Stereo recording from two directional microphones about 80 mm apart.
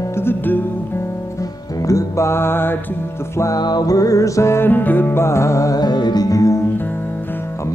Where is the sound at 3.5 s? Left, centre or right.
Left.